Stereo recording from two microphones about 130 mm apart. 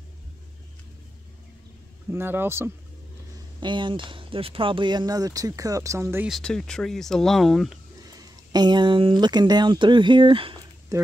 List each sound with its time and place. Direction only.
2.0 s speech: 15° right (ahead or behind)
3.6 s speech: 40° right (ahead or behind); by 6.2 s 20° right (ahead or behind)
6.2 s speech: centre (ahead or behind)
8.1 s speech: 30° right (ahead or behind)
10.9 s speech: 25° right (ahead or behind)